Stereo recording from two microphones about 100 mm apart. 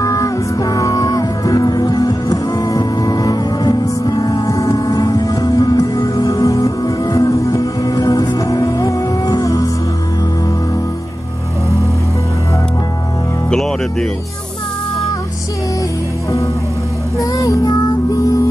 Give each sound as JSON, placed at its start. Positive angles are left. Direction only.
{"t": 0.0, "sound": "music", "side_deg": 35}
{"t": 13.5, "sound": "music", "side_deg": 5}
{"t": 17.2, "sound": "music", "side_deg": 35}